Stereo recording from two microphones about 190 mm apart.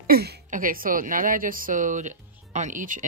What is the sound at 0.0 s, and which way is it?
Speech, 55° right (ahead or behind).